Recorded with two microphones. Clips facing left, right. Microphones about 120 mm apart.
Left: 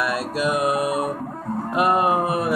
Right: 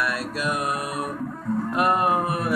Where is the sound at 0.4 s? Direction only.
10° left (ahead or behind).